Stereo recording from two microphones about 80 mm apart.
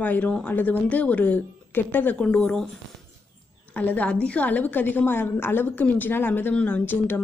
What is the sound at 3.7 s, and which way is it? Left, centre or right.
A woman's voice, centre.